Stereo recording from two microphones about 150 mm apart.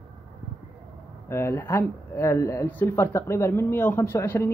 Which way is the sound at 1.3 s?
15° left (ahead or behind).